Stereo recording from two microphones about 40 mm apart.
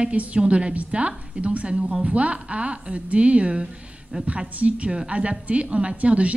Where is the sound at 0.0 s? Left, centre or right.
Right.